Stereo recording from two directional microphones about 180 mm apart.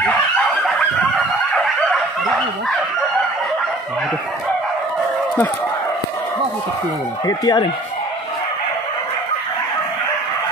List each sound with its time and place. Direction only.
0.5 s fowl: centre (ahead or behind)
7.2 s speech: 20° left (ahead or behind)